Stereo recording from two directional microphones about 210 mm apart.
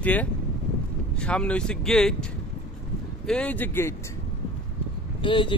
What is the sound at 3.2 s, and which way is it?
Speech, 5° left (ahead or behind).